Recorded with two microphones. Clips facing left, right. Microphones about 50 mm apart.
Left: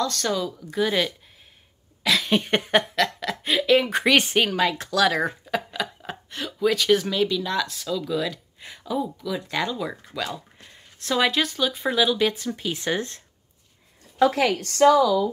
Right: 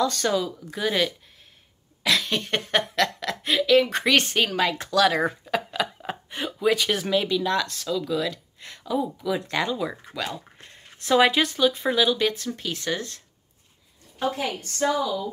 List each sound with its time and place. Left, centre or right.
0.0 s speech: centre
2.2 s speech: centre
2.9 s speech: centre
4.6 s speech: centre
8.9 s speech: centre
12.7 s speech: left
14.1 s a woman's voice: left